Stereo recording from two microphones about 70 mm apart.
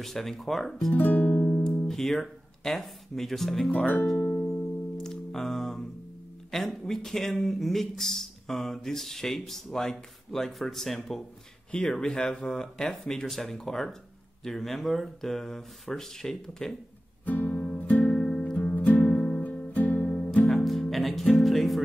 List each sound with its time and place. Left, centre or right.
0.0 s speech: centre
0.9 s music: left
1.9 s speech: centre
3.7 s speech: left
4.2 s music: left
4.9 s music: centre
6.5 s speech: centre
17.2 s music: left
18.2 s music: centre
20.4 s music: centre